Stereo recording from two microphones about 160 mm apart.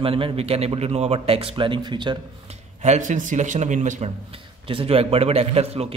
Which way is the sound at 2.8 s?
50° right (ahead or behind).